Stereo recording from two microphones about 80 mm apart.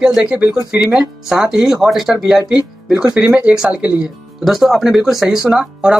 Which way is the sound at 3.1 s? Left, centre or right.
Centre.